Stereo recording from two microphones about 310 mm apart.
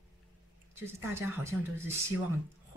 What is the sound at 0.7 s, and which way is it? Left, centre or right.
Speech, centre.